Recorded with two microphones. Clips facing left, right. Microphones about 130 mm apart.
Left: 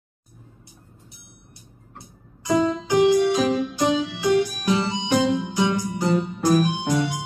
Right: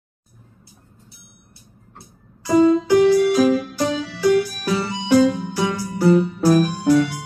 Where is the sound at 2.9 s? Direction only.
20° left (ahead or behind).